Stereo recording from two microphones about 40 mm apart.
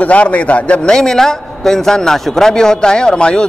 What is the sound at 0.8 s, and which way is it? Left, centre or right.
A man's voice, centre.